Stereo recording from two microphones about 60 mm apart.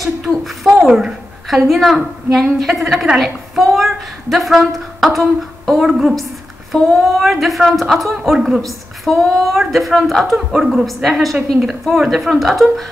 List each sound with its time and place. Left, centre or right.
0.0 s a woman's voice: centre